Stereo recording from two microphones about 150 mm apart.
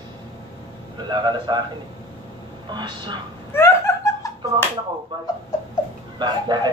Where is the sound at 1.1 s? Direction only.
30° right (ahead or behind).